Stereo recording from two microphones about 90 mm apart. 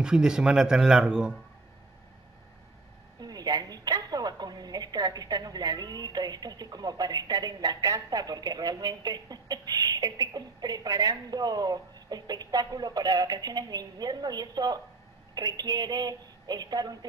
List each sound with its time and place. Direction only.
0.0 s speech: 10° right (ahead or behind)
3.2 s a woman's voice: 50° right (ahead or behind)